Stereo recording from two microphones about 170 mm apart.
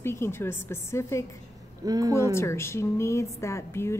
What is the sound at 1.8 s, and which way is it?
Speech, 20° right (ahead or behind).